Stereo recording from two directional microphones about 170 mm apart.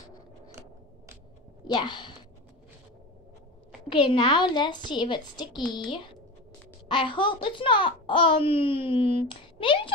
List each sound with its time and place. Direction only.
0.5 s a sound: 15° right (ahead or behind)
1.6 s speech: 25° left (ahead or behind)
3.9 s a child's voice: 30° left (ahead or behind)